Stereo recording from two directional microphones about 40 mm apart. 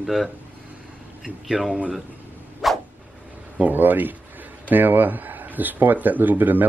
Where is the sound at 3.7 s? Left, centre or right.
Right.